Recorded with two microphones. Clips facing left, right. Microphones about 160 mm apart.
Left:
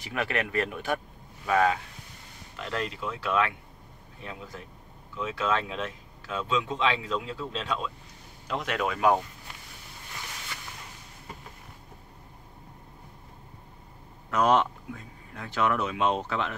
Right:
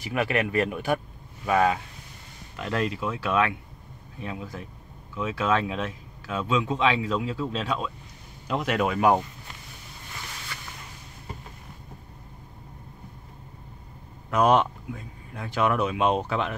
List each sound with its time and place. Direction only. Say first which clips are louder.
0.0 s speech: right 4 dB; 10° right (ahead or behind)
14.3 s speech: right 3 dB; 15° right (ahead or behind)